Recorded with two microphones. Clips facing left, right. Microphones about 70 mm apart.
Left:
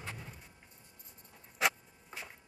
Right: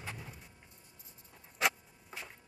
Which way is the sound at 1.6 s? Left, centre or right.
Centre.